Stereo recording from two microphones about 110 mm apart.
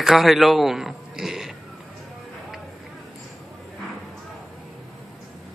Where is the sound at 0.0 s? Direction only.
Centre (ahead or behind).